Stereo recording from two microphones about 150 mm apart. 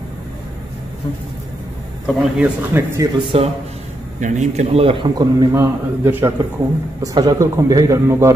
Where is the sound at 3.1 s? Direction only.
40° right (ahead or behind).